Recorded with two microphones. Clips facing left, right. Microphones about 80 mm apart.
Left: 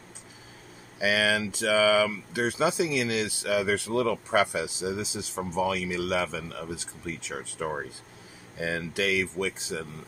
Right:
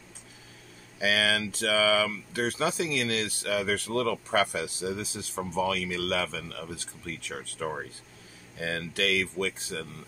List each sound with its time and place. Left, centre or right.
0.9 s speech: centre